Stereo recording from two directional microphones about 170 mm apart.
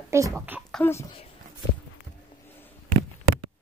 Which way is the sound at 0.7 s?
10° left (ahead or behind).